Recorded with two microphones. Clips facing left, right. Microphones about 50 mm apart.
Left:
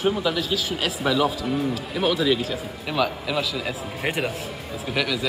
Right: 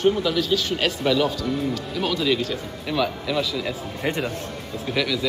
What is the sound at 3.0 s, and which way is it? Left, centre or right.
Speech, centre.